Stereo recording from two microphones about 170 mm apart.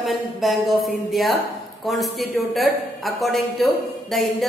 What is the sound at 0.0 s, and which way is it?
A woman's voice, centre (ahead or behind).